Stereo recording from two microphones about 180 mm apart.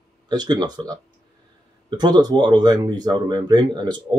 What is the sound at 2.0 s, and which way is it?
Speech, 25° right (ahead or behind).